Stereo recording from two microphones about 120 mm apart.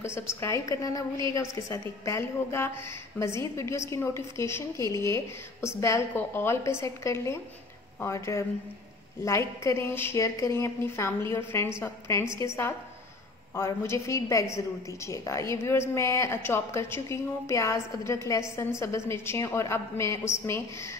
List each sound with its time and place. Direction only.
0.0 s a woman's voice: 20° left (ahead or behind)